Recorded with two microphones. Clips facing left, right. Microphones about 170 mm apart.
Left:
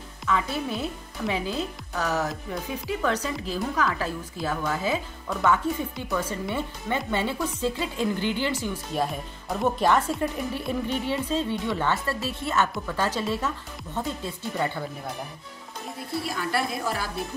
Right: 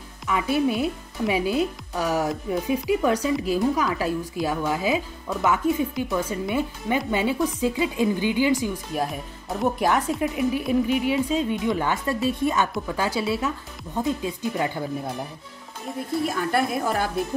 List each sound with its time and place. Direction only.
0.3 s speech: 15° right (ahead or behind)
16.3 s a woman's voice: 50° right (ahead or behind)